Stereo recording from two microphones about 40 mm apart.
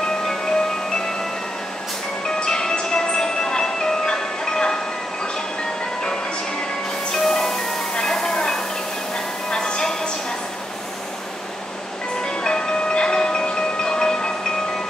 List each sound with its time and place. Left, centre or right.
0.3 s music: centre
2.2 s music: centre
7.1 s music: centre
7.9 s a sound: centre
12.3 s marimba: left